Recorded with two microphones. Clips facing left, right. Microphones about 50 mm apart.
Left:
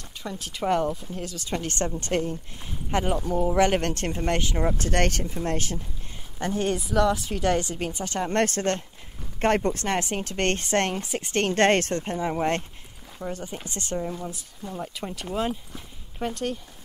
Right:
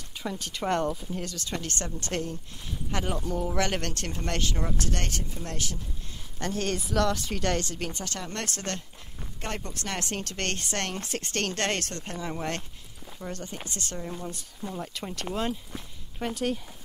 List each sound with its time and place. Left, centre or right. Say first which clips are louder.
0.2 s speech: left 2 dB; centre
1.6 s speech: left 6 dB; left
3.1 s speech: left 5 dB; centre; by 5.8 s left
6.3 s speech: left 4 dB; centre
6.8 s speech: left 3 dB; centre
8.2 s speech: left 14 dB; left
9.9 s speech: left 6 dB; centre
11.0 s speech: left 3 dB; centre
11.3 s speech: left 9 dB; left
13.2 s speech: left 4 dB; centre
13.7 s speech: left 4 dB; left
13.9 s speech: left 8 dB; centre